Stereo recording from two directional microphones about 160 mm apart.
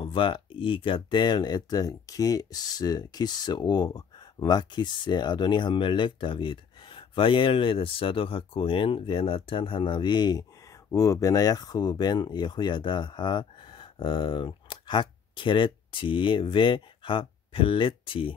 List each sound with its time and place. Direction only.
0.0 s speech: 35° left (ahead or behind)